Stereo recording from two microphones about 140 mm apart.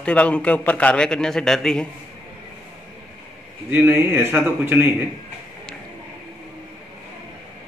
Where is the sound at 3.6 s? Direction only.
15° right (ahead or behind).